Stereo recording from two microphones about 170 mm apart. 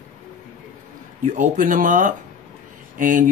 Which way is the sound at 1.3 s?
50° right (ahead or behind).